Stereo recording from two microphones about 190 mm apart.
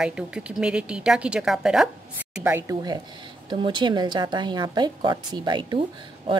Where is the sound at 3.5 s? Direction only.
25° right (ahead or behind).